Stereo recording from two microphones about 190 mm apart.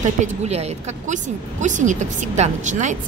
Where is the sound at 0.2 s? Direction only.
35° right (ahead or behind).